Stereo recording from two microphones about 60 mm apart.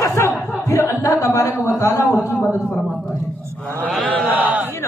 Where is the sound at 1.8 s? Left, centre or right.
Left.